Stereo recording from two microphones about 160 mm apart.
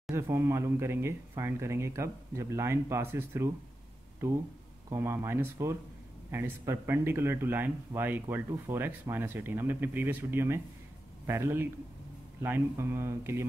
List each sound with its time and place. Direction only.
0.1 s speech: 15° right (ahead or behind)
4.8 s speech: 15° right (ahead or behind)